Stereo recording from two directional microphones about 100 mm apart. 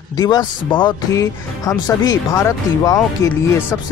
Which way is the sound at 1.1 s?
35° left (ahead or behind).